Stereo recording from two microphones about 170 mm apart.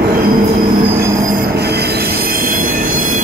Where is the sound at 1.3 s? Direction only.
70° right (ahead or behind); by 3.2 s 55° right (ahead or behind).